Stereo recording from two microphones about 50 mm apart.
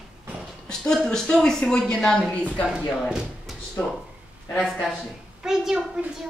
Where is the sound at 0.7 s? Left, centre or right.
Centre.